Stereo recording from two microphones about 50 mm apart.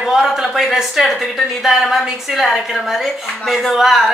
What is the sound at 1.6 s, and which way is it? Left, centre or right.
A woman's voice, centre.